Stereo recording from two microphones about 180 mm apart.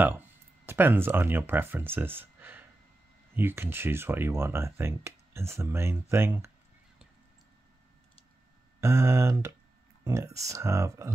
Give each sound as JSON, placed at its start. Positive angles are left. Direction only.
{"t": 0.7, "sound": "speech", "side_deg": -10}
{"t": 8.8, "sound": "speech", "side_deg": -15}